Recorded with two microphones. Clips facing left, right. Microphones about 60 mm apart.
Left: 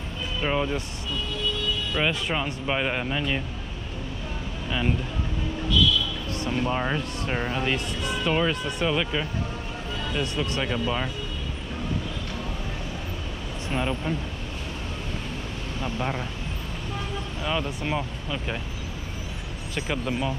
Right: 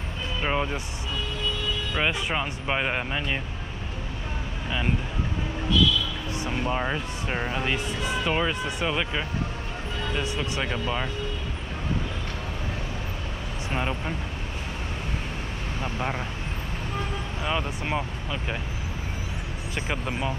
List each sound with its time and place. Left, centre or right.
0.4 s speech: centre
2.0 s speech: centre
4.6 s speech: centre
6.3 s speech: centre
13.7 s speech: centre
15.8 s speech: centre
17.4 s speech: centre
19.7 s speech: centre